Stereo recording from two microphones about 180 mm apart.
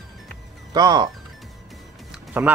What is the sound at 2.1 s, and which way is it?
Music, 10° right (ahead or behind).